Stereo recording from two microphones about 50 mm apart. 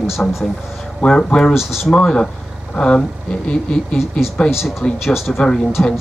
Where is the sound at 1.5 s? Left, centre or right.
Centre.